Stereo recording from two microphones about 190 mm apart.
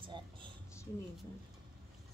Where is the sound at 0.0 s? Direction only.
25° right (ahead or behind).